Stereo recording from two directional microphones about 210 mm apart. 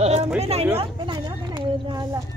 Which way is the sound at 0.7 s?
25° right (ahead or behind).